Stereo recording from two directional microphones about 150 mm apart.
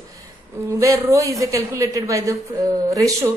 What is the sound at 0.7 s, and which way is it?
A woman's voice, 20° right (ahead or behind).